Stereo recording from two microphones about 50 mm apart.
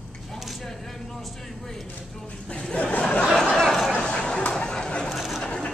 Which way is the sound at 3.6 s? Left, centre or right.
Centre.